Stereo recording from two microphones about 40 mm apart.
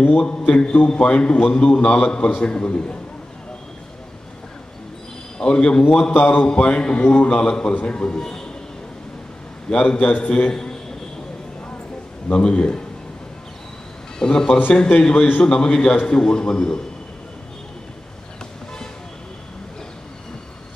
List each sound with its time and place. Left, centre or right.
0.8 s a man's voice: left
5.4 s a man's voice: left
6.1 s a man's voice: left
6.5 s a man's voice: left
9.8 s a man's voice: left
10.5 s a sound: centre
12.3 s a man's voice: left
14.2 s a man's voice: centre